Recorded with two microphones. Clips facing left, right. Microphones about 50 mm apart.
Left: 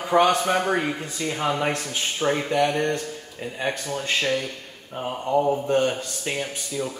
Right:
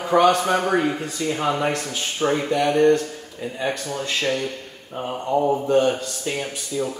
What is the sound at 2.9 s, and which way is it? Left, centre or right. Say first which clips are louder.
Speech: right 8 dB; left.